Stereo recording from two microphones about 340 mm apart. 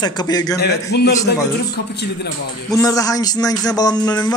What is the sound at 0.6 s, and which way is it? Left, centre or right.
Speech, left.